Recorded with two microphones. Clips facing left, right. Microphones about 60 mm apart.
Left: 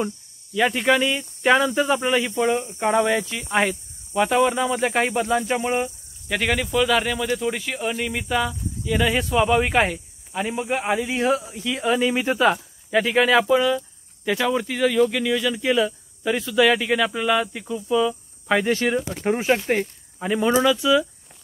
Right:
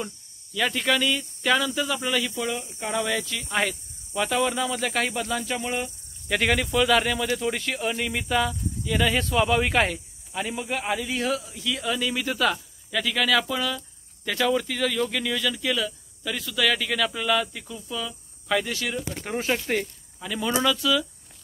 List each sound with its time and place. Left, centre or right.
0.6 s speech: left
6.2 s speech: centre; by 19.3 s left
19.3 s speech: left